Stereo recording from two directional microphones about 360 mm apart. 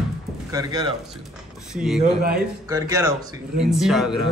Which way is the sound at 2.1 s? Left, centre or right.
Right.